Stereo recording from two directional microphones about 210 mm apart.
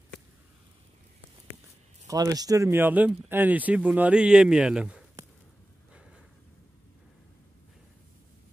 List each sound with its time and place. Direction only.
2.0 s speech: 15° right (ahead or behind)